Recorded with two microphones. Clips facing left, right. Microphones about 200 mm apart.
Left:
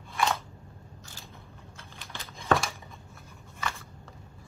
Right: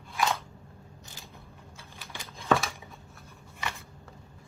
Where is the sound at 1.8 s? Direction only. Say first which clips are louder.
Even; 10° right (ahead or behind).